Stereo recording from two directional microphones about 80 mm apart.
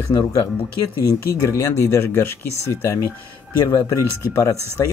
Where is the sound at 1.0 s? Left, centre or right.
Left.